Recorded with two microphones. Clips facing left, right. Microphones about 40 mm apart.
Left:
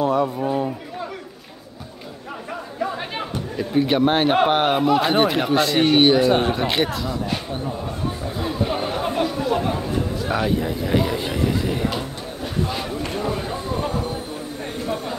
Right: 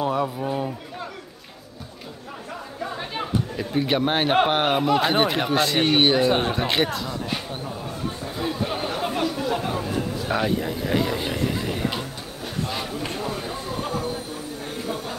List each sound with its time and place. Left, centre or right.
0.0 s a man's voice: centre
3.5 s a man's voice: centre
8.5 s chatter: centre
10.3 s a man's voice: centre
13.2 s a sound: left